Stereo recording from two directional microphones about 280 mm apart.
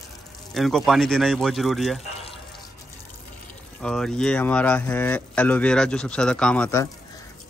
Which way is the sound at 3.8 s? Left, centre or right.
Centre.